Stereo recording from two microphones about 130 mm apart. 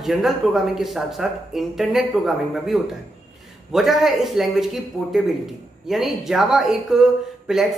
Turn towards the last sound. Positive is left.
turn(degrees=-5)  # may be behind; listen again after turning